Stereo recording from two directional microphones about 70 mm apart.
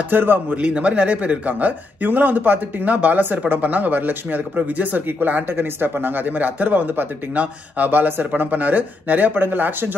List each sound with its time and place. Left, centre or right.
0.1 s speech: right
0.6 s speech: centre